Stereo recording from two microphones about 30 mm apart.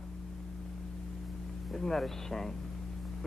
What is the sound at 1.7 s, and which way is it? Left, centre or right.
Speech, centre.